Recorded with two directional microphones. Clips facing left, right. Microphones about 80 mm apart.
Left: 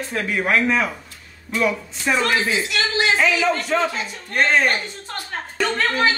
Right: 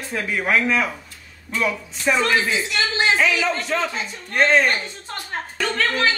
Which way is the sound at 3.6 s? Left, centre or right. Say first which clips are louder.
Left 3 dB; centre.